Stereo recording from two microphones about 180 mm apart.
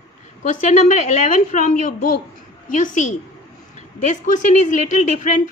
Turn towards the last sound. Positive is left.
turn(degrees=45)  # may be behind; listen again after turning